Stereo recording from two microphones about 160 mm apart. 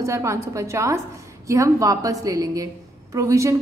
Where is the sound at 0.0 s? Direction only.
20° right (ahead or behind).